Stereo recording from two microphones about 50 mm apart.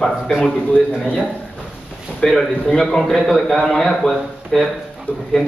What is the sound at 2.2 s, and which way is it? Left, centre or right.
A man's voice, centre.